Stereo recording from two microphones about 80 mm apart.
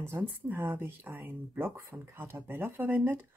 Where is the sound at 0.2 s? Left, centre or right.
Right.